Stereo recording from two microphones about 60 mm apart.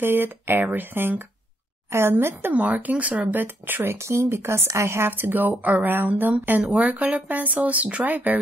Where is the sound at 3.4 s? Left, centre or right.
Right.